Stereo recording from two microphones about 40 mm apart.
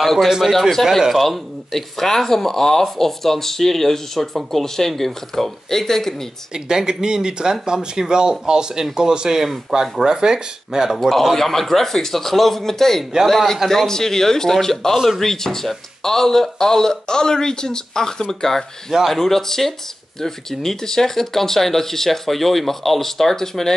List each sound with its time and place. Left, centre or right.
0.0 s speech: centre
6.5 s speech: centre
9.4 s speech: centre
11.0 s speech: centre